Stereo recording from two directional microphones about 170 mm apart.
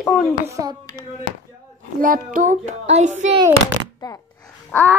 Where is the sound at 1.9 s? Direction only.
55° right (ahead or behind).